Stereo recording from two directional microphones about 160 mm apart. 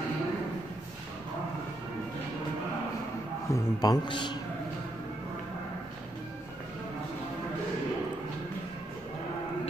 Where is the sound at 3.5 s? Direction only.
25° left (ahead or behind).